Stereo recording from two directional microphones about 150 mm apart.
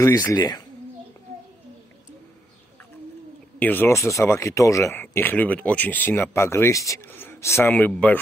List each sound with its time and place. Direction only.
0.4 s speech: 30° left (ahead or behind)
3.5 s speech: 10° left (ahead or behind)